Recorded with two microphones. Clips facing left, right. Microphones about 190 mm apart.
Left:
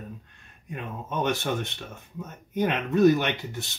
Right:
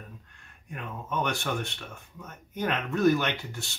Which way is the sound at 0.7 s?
20° left (ahead or behind).